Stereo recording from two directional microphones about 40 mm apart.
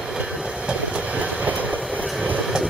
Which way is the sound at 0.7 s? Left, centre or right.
Right.